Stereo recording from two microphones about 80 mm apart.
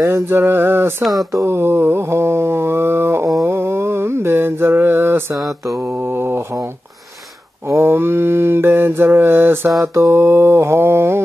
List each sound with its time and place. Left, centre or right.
0.0 s mantra: right
5.5 s mantra: right
5.9 s mantra: right